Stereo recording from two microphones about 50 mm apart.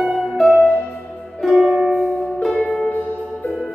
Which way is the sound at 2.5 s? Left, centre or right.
Centre.